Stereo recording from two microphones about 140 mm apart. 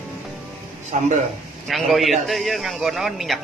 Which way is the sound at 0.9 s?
60° right (ahead or behind).